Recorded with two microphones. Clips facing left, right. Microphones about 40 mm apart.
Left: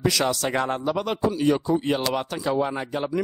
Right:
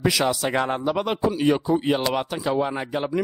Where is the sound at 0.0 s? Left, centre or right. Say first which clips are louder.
Right 1 dB; centre.